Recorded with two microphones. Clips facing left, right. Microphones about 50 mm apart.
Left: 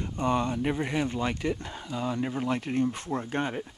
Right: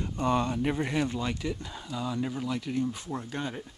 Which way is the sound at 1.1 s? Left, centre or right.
Left.